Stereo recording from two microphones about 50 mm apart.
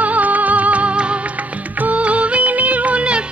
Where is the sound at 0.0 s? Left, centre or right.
Right.